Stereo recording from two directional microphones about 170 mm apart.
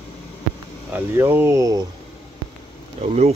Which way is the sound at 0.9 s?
10° right (ahead or behind).